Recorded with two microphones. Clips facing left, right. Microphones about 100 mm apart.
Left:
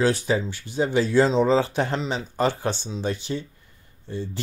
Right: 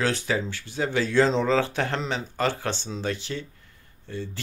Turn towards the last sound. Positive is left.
turn(degrees=20)  # may be behind; listen again after turning